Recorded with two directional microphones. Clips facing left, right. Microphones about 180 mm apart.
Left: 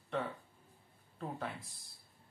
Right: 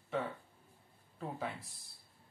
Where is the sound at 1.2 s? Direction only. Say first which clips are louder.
Right 1 dB; centre (ahead or behind).